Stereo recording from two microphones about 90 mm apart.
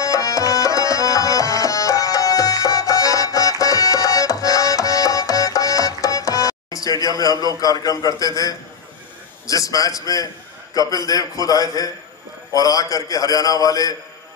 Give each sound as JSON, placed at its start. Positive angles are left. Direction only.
{"t": 0.0, "sound": "tabla", "side_deg": 40}
{"t": 9.5, "sound": "a man's voice", "side_deg": 40}